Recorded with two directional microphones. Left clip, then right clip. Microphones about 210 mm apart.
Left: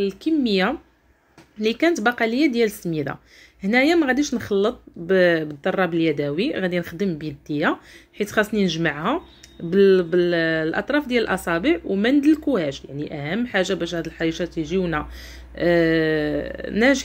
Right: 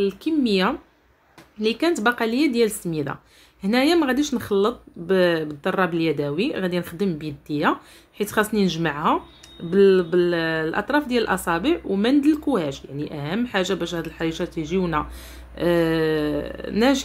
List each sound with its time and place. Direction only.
0.0 s speech: centre (ahead or behind)